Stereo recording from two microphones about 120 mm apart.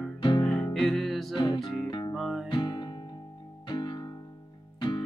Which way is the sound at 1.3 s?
40° left (ahead or behind).